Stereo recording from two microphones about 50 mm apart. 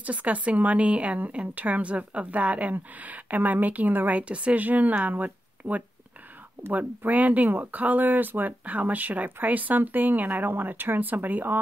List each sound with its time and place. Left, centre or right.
0.0 s a woman's voice: right